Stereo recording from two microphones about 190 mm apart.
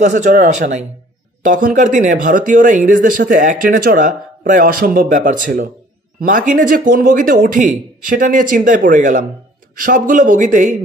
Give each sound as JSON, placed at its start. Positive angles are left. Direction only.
{"t": 0.0, "sound": "speech", "side_deg": -40}